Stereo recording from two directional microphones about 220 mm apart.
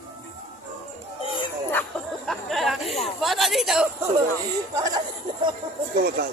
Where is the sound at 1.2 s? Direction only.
20° left (ahead or behind).